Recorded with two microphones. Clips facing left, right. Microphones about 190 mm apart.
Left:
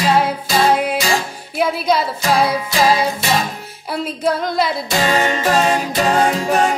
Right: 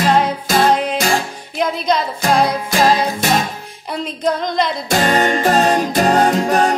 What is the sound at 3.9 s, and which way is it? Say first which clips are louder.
Female singing: even; 5° left (ahead or behind).